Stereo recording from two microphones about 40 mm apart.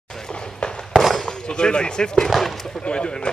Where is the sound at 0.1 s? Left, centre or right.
Centre.